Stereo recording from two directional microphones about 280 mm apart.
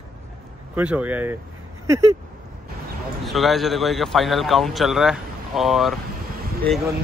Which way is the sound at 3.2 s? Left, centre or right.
Centre.